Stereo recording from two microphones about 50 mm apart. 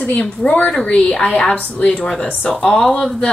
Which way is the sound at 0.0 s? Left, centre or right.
Left.